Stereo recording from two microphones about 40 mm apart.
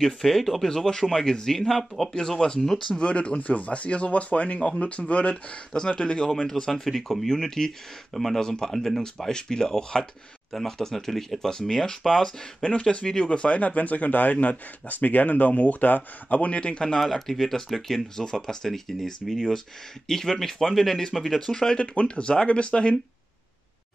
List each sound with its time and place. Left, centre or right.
0.0 s speech: centre; by 3.3 s left
3.3 s speech: left
5.9 s speech: left; by 8.4 s centre
8.4 s speech: centre
9.0 s speech: centre
10.5 s speech: centre
12.6 s speech: left; by 21.5 s centre
21.5 s speech: centre